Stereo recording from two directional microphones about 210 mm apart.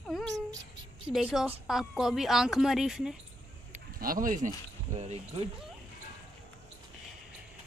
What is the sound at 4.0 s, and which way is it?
Speech, 40° right (ahead or behind).